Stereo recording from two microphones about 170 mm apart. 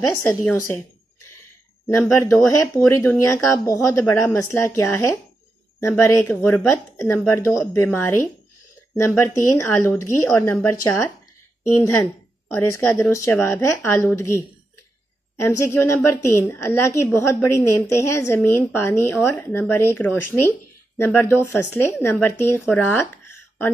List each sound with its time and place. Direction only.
0.1 s a woman's voice: 15° left (ahead or behind)
2.0 s a woman's voice: 15° left (ahead or behind)
12.5 s a woman's voice: 15° left (ahead or behind)
15.4 s a woman's voice: 15° left (ahead or behind)